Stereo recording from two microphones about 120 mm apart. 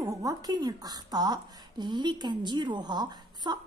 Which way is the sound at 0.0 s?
30° right (ahead or behind).